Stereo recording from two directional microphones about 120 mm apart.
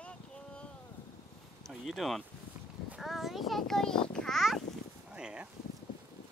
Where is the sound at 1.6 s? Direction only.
Centre (ahead or behind).